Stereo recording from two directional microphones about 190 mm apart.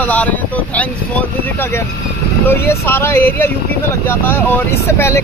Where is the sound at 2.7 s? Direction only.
15° left (ahead or behind).